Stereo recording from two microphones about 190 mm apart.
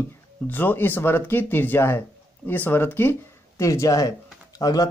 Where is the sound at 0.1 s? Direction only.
10° left (ahead or behind).